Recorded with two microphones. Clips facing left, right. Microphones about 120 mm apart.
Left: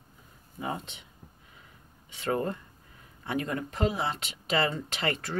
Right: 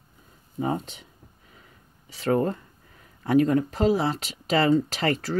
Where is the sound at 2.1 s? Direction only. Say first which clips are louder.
Right 6 dB; 40° right (ahead or behind).